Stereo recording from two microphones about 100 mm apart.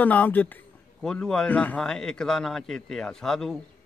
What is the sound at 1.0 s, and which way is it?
A man's voice, 5° left (ahead or behind).